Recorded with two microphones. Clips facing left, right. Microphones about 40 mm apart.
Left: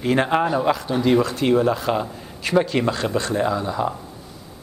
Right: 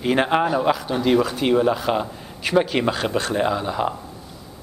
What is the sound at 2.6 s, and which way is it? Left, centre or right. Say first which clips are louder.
A man's voice: even; centre.